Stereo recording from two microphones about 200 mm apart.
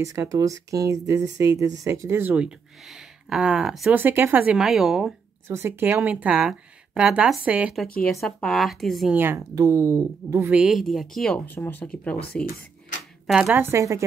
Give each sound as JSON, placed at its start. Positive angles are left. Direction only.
{"t": 0.0, "sound": "speech", "side_deg": -15}
{"t": 5.5, "sound": "speech", "side_deg": -10}
{"t": 13.3, "sound": "speech", "side_deg": -5}